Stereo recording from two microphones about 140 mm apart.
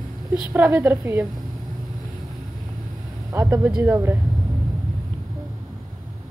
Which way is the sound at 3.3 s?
20° right (ahead or behind).